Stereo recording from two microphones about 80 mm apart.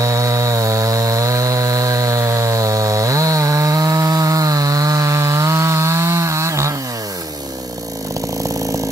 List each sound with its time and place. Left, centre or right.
0.0 s chainsaw: right